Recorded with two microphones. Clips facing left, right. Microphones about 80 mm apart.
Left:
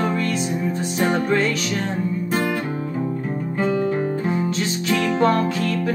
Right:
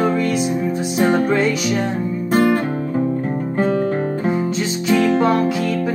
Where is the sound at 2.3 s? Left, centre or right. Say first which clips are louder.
Right 9 dB; right.